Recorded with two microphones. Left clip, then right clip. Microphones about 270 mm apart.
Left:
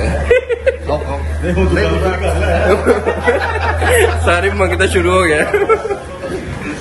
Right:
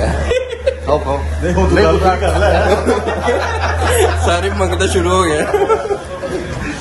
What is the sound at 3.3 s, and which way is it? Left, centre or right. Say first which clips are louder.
Speech: left 1 dB; right.